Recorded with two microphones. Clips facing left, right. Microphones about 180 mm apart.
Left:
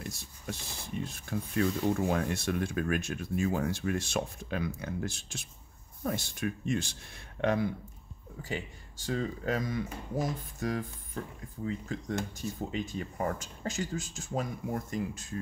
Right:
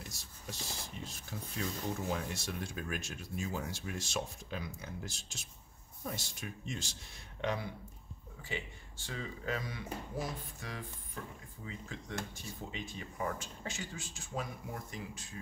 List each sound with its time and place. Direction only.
0.0 s speech: 55° left (ahead or behind)
8.4 s speech: 40° left (ahead or behind)